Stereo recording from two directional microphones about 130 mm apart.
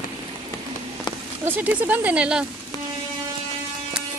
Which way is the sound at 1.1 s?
35° left (ahead or behind).